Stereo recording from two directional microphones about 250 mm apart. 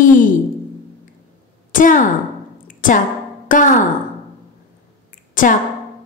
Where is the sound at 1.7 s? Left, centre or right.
Left.